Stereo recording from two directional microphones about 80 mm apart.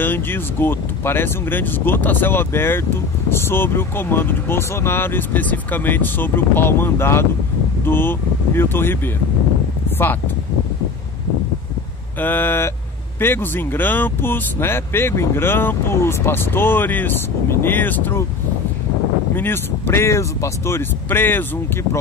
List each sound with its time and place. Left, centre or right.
0.0 s speech: left
12.2 s speech: left
19.3 s speech: left